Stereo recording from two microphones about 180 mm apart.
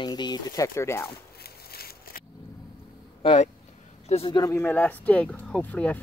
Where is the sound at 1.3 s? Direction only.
60° left (ahead or behind).